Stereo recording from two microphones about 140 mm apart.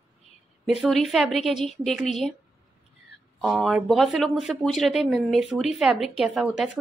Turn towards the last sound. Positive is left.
turn(degrees=-5)  # may be behind; listen again after turning